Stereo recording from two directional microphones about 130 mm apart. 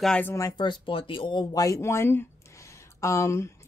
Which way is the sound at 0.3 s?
25° left (ahead or behind).